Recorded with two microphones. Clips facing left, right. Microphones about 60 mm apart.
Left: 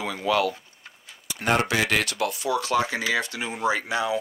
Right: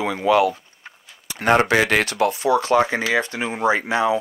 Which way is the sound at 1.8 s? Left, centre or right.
Right.